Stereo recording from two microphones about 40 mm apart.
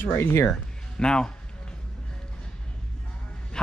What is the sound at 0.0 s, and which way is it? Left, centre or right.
Speech, left.